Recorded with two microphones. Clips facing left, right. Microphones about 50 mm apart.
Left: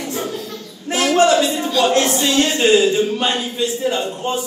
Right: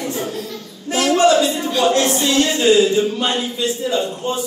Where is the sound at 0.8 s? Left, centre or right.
Left.